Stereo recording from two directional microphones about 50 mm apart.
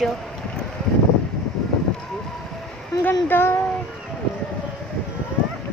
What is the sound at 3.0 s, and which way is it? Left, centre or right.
Speech, left.